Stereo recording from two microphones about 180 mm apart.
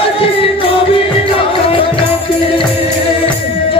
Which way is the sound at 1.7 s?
30° left (ahead or behind).